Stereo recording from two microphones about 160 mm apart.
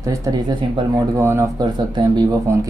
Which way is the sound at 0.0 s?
20° right (ahead or behind).